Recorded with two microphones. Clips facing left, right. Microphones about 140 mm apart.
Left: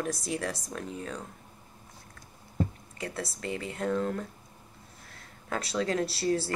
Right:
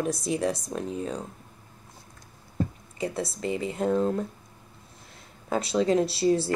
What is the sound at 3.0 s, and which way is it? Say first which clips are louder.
Speech: right 6 dB; 20° right (ahead or behind).